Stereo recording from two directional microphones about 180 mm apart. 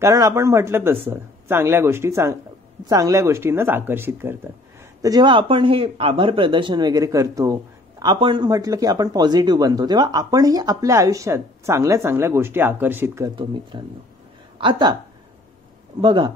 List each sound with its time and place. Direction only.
0.0 s speech: 20° right (ahead or behind)
5.0 s speech: 25° right (ahead or behind)
13.4 s speech: 25° right (ahead or behind)
16.0 s speech: 30° right (ahead or behind)